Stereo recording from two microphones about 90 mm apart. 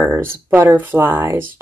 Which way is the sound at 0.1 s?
20° right (ahead or behind).